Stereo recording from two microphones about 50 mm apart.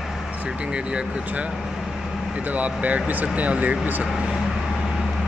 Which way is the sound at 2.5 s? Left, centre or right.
Right.